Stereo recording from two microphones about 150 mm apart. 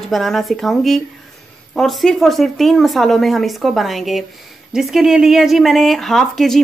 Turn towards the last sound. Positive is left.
turn(degrees=0)  # may be behind; listen again after turning